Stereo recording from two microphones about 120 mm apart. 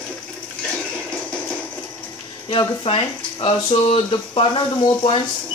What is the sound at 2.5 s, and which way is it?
Speech, 45° left (ahead or behind).